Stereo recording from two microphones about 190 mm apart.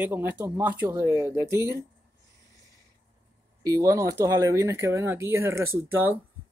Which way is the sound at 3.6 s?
20° right (ahead or behind).